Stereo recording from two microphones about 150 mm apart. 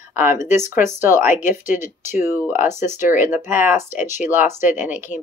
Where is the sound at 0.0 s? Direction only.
15° right (ahead or behind).